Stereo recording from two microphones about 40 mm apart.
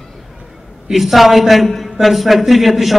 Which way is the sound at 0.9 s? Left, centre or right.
Centre.